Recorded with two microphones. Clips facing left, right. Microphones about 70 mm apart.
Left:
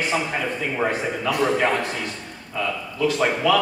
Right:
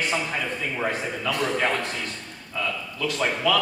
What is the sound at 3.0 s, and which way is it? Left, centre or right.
Speech, centre.